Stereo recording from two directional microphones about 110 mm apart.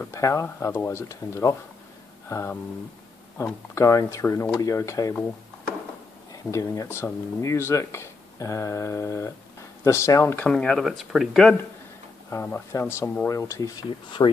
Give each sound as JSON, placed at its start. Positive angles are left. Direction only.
{"t": 0.1, "sound": "speech", "side_deg": 25}
{"t": 6.3, "sound": "speech", "side_deg": 30}
{"t": 10.5, "sound": "speech", "side_deg": 5}
{"t": 12.5, "sound": "speech", "side_deg": 25}
{"t": 13.8, "sound": "speech", "side_deg": 45}